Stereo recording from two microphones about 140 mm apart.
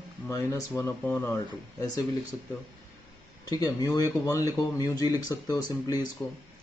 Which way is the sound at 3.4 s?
25° left (ahead or behind).